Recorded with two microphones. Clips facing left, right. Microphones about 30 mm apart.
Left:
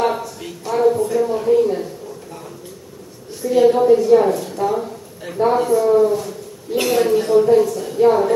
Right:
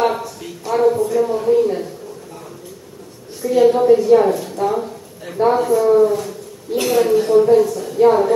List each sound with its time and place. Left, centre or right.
0.0 s a sound: centre
3.5 s a woman's voice: centre
3.8 s a woman's voice: centre
5.7 s speech: centre
6.7 s a woman's voice: centre
8.0 s a woman's voice: centre